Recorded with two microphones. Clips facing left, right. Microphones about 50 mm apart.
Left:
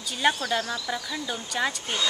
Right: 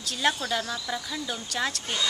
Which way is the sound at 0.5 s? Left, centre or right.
Centre.